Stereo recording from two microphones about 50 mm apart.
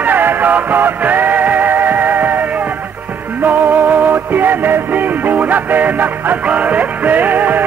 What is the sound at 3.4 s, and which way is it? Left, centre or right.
Music, right.